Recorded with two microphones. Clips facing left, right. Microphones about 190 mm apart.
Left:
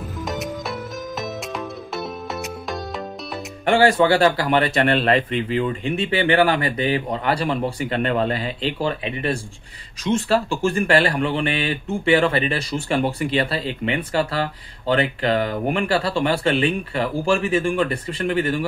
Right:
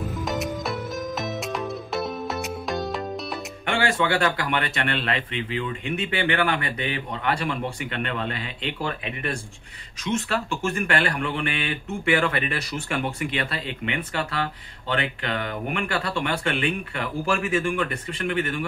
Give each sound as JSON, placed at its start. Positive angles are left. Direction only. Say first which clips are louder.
{"t": 0.2, "sound": "music", "louder": "left 2 dB", "side_deg": 0}
{"t": 3.6, "sound": "speech", "louder": "left 8 dB", "side_deg": 35}